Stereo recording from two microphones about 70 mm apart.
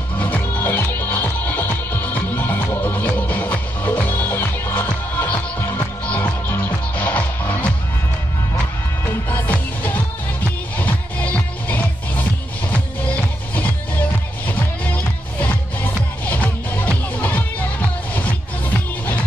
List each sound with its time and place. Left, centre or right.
0.2 s music: left
9.0 s music: left
16.3 s music: left